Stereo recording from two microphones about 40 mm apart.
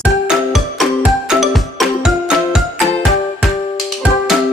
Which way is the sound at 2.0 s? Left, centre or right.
Centre.